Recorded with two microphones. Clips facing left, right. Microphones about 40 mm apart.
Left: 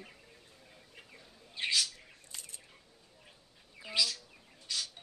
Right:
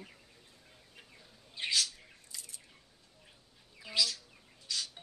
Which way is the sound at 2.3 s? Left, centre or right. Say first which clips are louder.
Left 1 dB; left.